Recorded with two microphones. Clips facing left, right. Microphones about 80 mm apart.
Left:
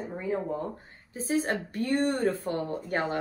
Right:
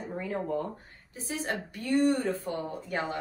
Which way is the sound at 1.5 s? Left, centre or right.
Left.